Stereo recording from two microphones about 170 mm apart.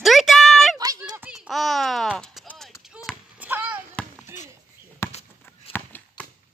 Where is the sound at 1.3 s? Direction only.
Centre (ahead or behind).